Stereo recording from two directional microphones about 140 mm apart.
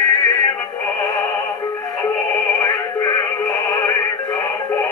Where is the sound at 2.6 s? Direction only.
25° left (ahead or behind).